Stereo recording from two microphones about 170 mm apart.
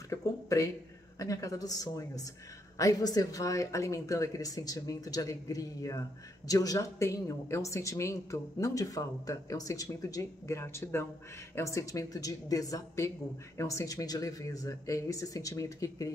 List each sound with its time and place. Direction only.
0.1 s speech: 20° left (ahead or behind)